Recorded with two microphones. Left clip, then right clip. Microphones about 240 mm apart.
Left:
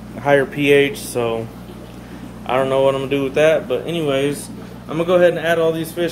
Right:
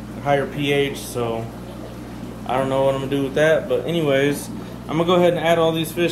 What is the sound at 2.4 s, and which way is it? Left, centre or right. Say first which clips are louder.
A man's voice: left 3 dB; centre.